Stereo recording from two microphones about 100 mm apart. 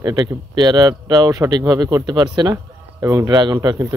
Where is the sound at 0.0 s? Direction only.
40° right (ahead or behind).